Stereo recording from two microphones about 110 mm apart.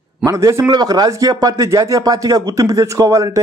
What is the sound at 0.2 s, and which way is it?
Speech, 30° right (ahead or behind).